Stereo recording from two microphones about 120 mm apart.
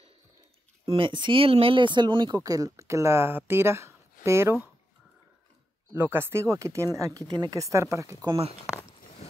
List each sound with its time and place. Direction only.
0.8 s speech: 45° right (ahead or behind); by 4.6 s 20° right (ahead or behind)
5.9 s speech: 20° right (ahead or behind)